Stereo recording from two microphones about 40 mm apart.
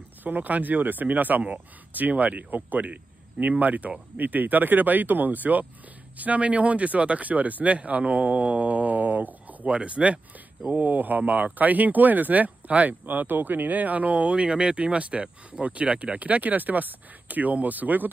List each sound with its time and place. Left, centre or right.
0.2 s speech: right
9.7 s speech: right
10.7 s speech: right
13.0 s speech: right
14.5 s speech: centre
14.8 s speech: right